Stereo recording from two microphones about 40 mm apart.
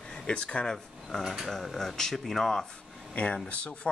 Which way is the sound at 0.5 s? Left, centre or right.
Centre.